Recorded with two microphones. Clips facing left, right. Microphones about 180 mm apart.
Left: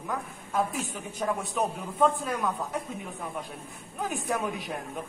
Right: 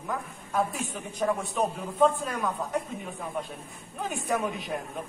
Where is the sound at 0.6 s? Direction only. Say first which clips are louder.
Even; centre (ahead or behind).